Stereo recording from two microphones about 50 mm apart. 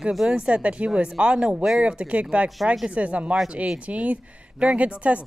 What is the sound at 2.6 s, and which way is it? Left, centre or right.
Speech, centre.